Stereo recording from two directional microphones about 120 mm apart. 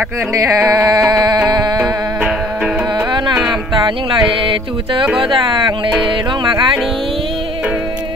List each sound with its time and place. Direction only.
0.3 s speech: 25° right (ahead or behind)
1.8 s music: 10° right (ahead or behind)
5.0 s speech: 5° right (ahead or behind)
5.3 s music: 40° right (ahead or behind)